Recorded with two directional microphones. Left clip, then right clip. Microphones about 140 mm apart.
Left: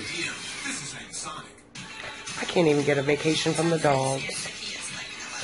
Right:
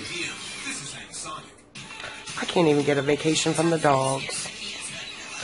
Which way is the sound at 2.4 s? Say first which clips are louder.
Right 1 dB; 5° right (ahead or behind).